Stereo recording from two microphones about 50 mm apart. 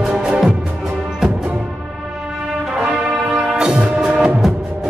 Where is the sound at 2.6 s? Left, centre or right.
Centre.